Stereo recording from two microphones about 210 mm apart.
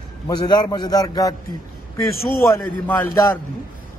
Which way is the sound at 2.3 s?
10° left (ahead or behind).